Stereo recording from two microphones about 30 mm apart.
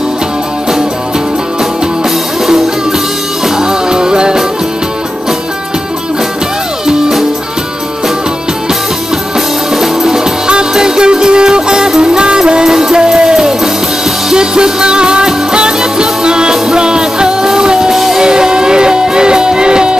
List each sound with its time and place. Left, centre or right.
3.4 s music: right
9.8 s music: centre
10.4 s music: right
17.9 s music: centre
18.2 s music: right